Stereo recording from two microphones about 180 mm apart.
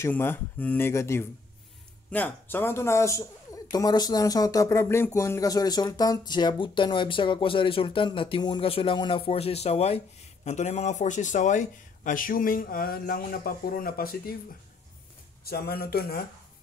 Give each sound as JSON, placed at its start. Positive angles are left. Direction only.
{"t": 0.0, "sound": "speech", "side_deg": 10}
{"t": 15.4, "sound": "speech", "side_deg": 60}